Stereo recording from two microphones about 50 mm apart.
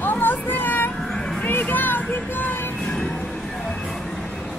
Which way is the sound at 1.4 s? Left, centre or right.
Left.